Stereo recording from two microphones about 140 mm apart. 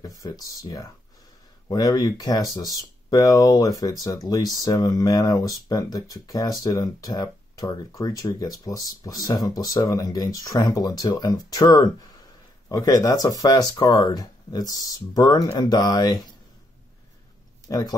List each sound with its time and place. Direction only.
0.0 s speech: 25° left (ahead or behind)
17.6 s speech: 25° left (ahead or behind)